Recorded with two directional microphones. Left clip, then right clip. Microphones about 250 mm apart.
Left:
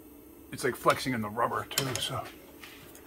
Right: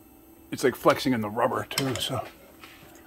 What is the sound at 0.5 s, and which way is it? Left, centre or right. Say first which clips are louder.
Speech: right 5 dB; right.